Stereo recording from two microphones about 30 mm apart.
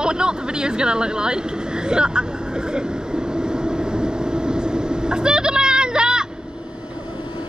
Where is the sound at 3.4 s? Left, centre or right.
Right.